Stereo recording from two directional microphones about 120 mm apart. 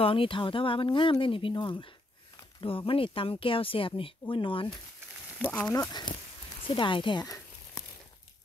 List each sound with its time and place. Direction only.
0.0 s speech: 50° left (ahead or behind)
5.4 s speech: 15° left (ahead or behind)
5.9 s speech: 35° left (ahead or behind)